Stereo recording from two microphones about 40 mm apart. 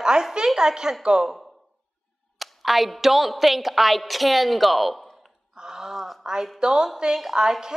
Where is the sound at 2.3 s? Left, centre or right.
Centre.